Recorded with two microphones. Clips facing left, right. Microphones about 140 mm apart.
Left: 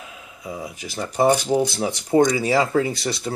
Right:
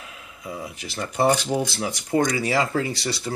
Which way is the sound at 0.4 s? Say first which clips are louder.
Left 2 dB; 20° left (ahead or behind).